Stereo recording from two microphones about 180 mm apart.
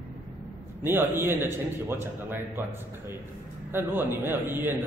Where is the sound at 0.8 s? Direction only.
10° right (ahead or behind).